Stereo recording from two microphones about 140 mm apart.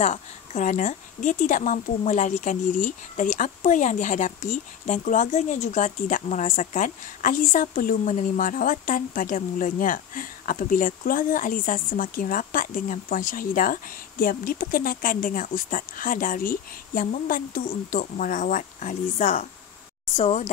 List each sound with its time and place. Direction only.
0.0 s a woman's voice: 55° left (ahead or behind)
20.2 s speech: 50° left (ahead or behind)